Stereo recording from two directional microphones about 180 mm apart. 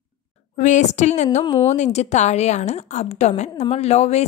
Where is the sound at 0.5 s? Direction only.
40° left (ahead or behind).